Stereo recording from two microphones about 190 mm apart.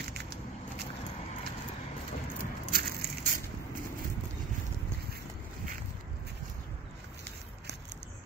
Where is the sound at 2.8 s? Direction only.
50° right (ahead or behind).